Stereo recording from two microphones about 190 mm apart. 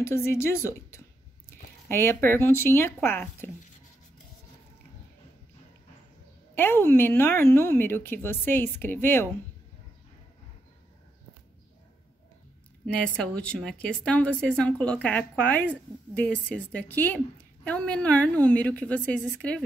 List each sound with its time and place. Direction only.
0.0 s a woman's voice: 15° left (ahead or behind)
6.5 s a woman's voice: 10° left (ahead or behind)
12.8 s a woman's voice: 5° left (ahead or behind)